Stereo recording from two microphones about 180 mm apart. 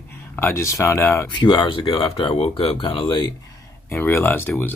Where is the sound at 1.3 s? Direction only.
25° left (ahead or behind).